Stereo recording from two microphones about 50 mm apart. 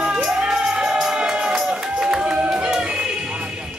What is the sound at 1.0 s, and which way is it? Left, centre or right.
Crowd, centre.